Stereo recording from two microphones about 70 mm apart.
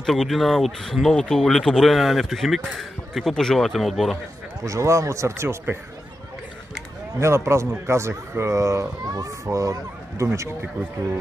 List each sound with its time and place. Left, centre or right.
0.0 s speech: centre
4.6 s speech: right
7.2 s speech: right